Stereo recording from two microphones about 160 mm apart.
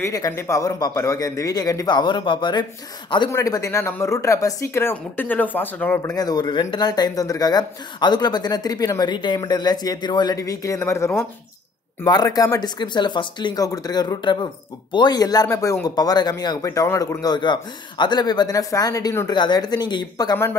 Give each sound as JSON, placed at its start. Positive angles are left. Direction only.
{"t": 0.0, "sound": "speech", "side_deg": 20}
{"t": 6.0, "sound": "speech", "side_deg": 25}